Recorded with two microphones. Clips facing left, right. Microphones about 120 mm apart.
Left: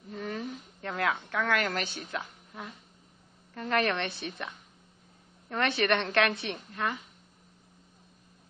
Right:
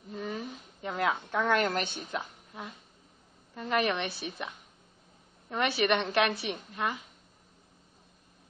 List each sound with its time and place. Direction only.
0.1 s a sound: 5° right (ahead or behind)
1.5 s a woman's voice: 25° right (ahead or behind)
2.0 s a woman's voice: 10° right (ahead or behind)